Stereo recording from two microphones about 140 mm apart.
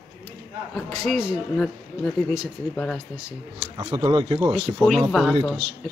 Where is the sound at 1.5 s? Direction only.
5° left (ahead or behind).